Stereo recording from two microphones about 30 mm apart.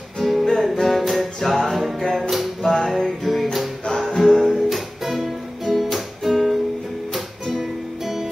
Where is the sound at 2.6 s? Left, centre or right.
Centre.